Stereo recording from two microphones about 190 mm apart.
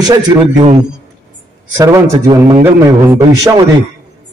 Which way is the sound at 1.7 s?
15° right (ahead or behind).